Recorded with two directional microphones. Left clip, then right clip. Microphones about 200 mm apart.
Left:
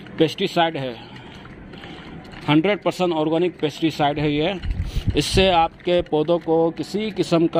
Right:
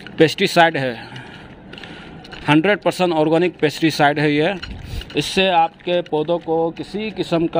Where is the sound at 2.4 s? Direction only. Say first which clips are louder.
Right 3 dB; 15° right (ahead or behind).